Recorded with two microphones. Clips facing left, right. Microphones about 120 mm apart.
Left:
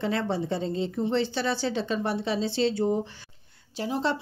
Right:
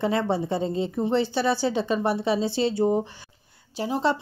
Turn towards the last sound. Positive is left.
turn(degrees=-5)  # may be behind; listen again after turning